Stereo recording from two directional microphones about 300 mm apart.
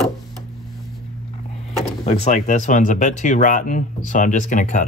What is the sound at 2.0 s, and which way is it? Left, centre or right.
Speech, left.